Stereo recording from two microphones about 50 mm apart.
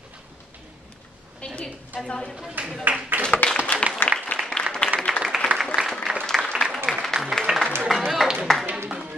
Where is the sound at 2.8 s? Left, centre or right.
Right.